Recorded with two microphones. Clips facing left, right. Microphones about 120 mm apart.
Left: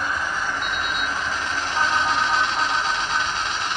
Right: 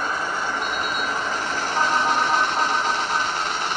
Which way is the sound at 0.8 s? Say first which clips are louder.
Right 1 dB; 45° right (ahead or behind).